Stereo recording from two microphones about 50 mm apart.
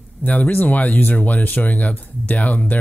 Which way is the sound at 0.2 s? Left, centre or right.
Left.